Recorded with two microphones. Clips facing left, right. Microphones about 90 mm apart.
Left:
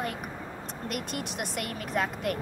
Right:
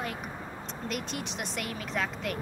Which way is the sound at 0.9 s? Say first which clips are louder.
Left 1 dB; 55° left (ahead or behind).